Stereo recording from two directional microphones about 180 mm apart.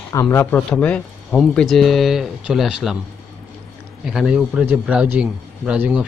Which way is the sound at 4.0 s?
5° right (ahead or behind).